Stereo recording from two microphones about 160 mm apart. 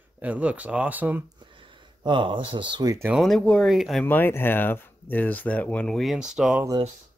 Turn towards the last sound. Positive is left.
turn(degrees=-5)  # may be behind; listen again after turning